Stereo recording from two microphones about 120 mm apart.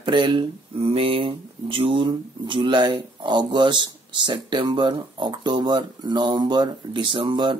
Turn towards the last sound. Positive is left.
turn(degrees=-40)  # may be behind; listen again after turning